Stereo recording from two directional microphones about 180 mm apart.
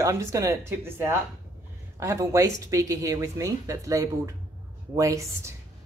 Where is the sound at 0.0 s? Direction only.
15° right (ahead or behind).